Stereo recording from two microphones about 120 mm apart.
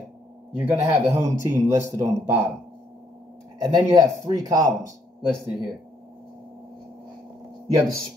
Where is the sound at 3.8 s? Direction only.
30° right (ahead or behind).